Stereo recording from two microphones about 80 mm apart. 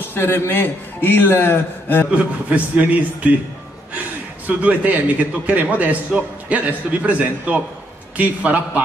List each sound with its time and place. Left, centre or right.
0.0 s speech: left
2.0 s a man's voice: centre
4.5 s a man's voice: centre